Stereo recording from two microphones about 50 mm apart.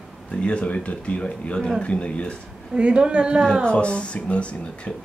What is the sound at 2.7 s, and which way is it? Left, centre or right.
Speech, centre.